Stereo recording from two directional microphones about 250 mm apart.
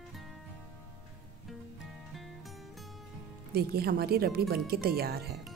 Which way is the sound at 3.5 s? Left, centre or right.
Right.